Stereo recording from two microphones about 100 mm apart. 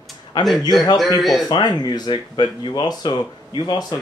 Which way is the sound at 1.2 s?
Centre (ahead or behind).